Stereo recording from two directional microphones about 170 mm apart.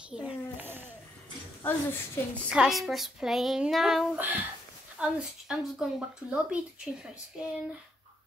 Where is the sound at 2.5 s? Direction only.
5° right (ahead or behind).